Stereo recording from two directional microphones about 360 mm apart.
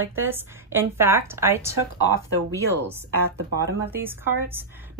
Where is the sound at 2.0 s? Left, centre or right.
Centre.